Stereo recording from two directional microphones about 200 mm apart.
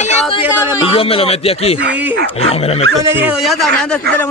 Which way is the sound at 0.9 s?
30° left (ahead or behind).